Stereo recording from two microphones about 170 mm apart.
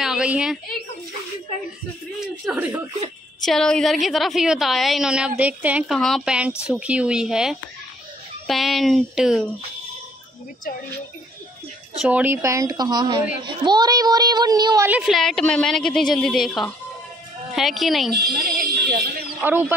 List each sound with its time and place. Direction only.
0.0 s a sound: 5° right (ahead or behind)
2.1 s a woman's voice: 5° right (ahead or behind)
12.0 s a woman's voice: 10° right (ahead or behind)
14.9 s a woman's voice: 5° right (ahead or behind)
18.4 s speech: 60° right (ahead or behind)
19.4 s speech: 10° right (ahead or behind)